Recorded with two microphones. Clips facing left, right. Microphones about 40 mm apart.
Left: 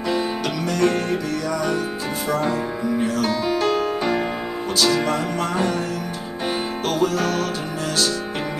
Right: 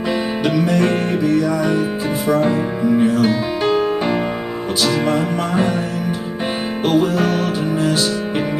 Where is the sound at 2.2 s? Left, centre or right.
Centre.